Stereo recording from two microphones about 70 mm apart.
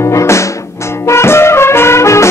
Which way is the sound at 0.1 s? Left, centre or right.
Left.